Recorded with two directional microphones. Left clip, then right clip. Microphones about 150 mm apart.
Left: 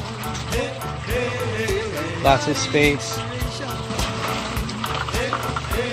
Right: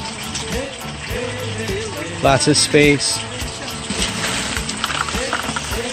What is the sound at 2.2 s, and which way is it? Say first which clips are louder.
Speech: right 4 dB; 55° right (ahead or behind).